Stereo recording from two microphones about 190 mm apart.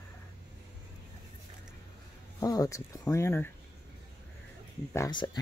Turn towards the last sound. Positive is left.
turn(degrees=25)  # may be behind; listen again after turning